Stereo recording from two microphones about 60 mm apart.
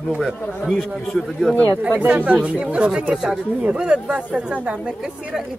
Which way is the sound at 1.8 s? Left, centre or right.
Right.